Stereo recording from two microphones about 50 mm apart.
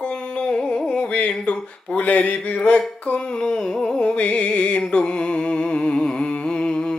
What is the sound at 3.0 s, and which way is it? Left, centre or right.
Music, left.